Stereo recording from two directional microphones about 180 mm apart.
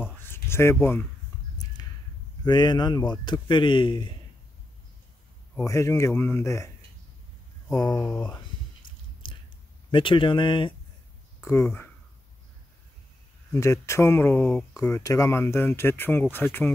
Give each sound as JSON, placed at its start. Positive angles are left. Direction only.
{"t": 0.0, "sound": "a sound", "side_deg": 10}
{"t": 2.4, "sound": "speech", "side_deg": 25}
{"t": 5.6, "sound": "speech", "side_deg": 15}
{"t": 7.7, "sound": "speech", "side_deg": 20}
{"t": 9.2, "sound": "a sound", "side_deg": 25}
{"t": 9.8, "sound": "speech", "side_deg": 25}
{"t": 11.4, "sound": "speech", "side_deg": 15}
{"t": 13.5, "sound": "speech", "side_deg": 15}